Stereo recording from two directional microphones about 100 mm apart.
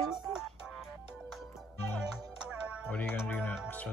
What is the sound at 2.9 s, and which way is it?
Music, 20° left (ahead or behind).